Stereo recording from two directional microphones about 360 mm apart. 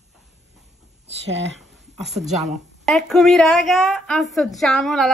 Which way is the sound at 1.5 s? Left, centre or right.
Centre.